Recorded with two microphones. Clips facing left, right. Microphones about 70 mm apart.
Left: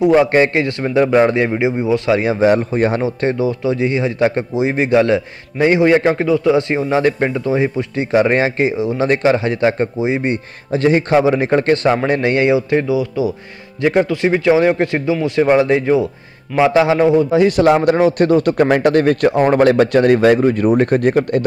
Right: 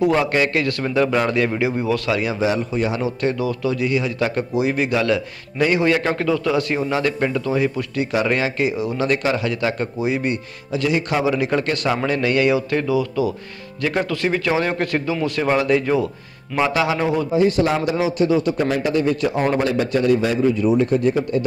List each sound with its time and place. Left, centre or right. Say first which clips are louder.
0.0 s a man's voice: left 6 dB; left
2.4 s a man's voice: left 8 dB; left
17.3 s speech: left 6 dB; left
19.6 s speech: left 8 dB; left